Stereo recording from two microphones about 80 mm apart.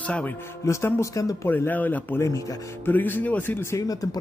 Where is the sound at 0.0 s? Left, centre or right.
Centre.